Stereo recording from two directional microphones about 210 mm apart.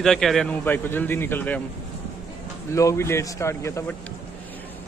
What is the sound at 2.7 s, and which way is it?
A man's voice, 15° left (ahead or behind).